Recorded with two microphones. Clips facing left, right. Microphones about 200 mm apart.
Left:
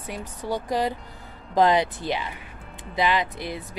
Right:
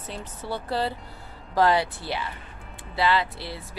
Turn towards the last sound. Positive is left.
turn(degrees=20)  # may be behind; listen again after turning